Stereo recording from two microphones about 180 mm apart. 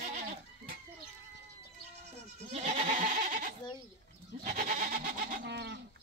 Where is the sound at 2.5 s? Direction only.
40° right (ahead or behind).